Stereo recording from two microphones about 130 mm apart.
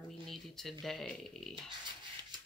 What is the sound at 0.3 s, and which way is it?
Speech, centre (ahead or behind).